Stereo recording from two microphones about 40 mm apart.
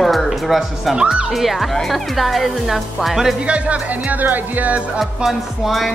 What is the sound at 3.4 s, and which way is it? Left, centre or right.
Speech, right.